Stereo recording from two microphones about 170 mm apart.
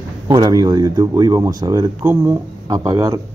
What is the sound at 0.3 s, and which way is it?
A man's voice, 25° right (ahead or behind).